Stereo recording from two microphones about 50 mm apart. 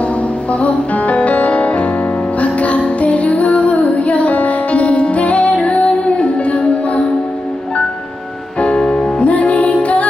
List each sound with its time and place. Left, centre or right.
0.5 s music: left
8.5 s music: left